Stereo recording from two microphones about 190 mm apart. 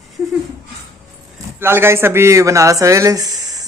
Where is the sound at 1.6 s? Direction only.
10° right (ahead or behind).